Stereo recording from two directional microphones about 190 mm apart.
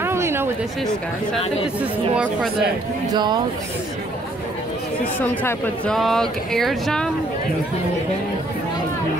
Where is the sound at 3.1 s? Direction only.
20° right (ahead or behind).